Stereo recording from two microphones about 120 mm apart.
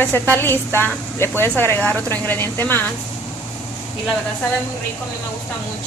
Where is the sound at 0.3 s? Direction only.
20° left (ahead or behind).